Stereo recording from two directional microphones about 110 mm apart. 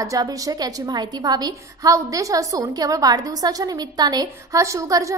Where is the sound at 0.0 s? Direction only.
30° right (ahead or behind).